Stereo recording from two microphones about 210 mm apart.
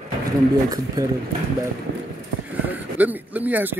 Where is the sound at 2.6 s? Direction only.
10° right (ahead or behind).